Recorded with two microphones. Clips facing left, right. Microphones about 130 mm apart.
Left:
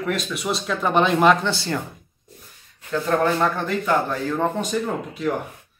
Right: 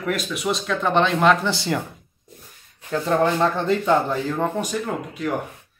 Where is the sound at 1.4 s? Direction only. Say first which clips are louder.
Right 1 dB; 15° right (ahead or behind).